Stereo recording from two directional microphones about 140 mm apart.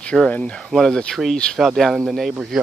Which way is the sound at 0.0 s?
5° left (ahead or behind).